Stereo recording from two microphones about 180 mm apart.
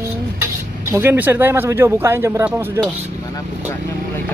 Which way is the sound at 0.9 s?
10° right (ahead or behind).